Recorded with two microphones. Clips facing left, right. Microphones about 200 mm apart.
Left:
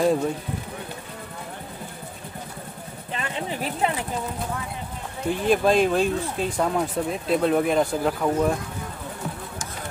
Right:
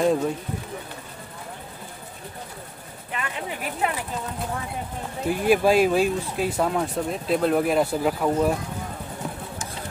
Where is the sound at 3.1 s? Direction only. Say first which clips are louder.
Left 2 dB; 30° left (ahead or behind).